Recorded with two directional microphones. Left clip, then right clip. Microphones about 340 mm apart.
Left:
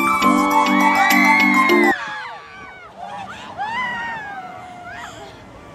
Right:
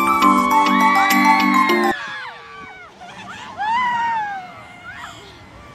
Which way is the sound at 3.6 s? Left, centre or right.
Centre.